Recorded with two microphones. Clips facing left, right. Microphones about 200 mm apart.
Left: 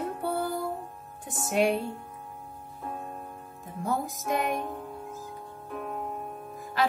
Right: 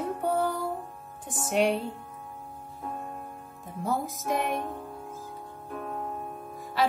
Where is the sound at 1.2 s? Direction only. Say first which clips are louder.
Right 1 dB; 45° right (ahead or behind).